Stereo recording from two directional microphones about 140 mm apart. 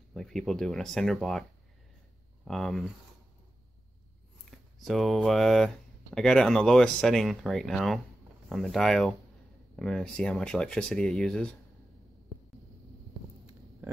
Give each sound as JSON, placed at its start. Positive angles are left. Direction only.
{"t": 0.1, "sound": "speech", "side_deg": 0}
{"t": 2.4, "sound": "speech", "side_deg": 0}
{"t": 4.5, "sound": "speech", "side_deg": 0}
{"t": 12.3, "sound": "a sound", "side_deg": 35}